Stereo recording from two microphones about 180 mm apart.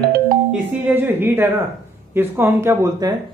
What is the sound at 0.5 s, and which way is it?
A woman's voice, 10° right (ahead or behind).